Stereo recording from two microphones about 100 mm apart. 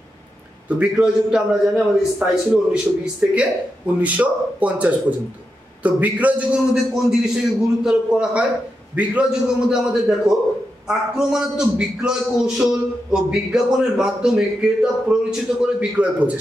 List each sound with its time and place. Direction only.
0.7 s a man's voice: 15° right (ahead or behind)